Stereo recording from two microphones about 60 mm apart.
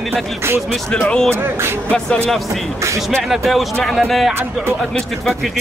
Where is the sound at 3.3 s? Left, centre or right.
Centre.